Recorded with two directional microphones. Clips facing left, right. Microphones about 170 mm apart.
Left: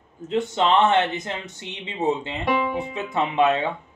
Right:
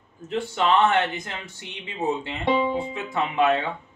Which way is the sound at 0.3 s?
20° left (ahead or behind).